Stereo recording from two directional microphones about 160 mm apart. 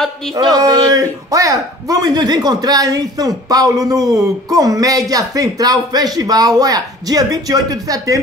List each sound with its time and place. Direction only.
0.6 s speech: 25° right (ahead or behind)